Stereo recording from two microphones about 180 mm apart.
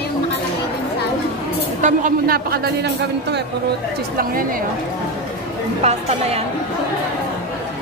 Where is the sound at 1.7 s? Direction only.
45° right (ahead or behind).